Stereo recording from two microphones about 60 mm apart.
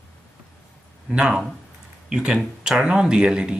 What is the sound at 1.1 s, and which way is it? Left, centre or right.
Speech, centre.